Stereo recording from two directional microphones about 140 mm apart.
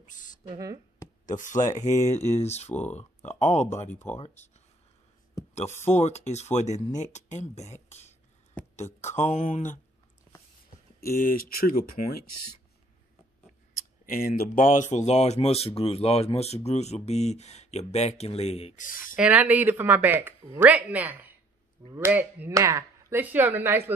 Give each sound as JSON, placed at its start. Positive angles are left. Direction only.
{"t": 0.0, "sound": "a sound", "side_deg": 65}
{"t": 0.5, "sound": "speech", "side_deg": -25}
{"t": 1.2, "sound": "speech", "side_deg": 65}
{"t": 2.7, "sound": "speech", "side_deg": 10}
{"t": 3.3, "sound": "speech", "side_deg": 55}
{"t": 5.9, "sound": "speech", "side_deg": 55}
{"t": 11.1, "sound": "speech", "side_deg": 85}
{"t": 13.7, "sound": "speech", "side_deg": 90}
{"t": 18.8, "sound": "speech", "side_deg": 80}
{"t": 19.1, "sound": "speech", "side_deg": -10}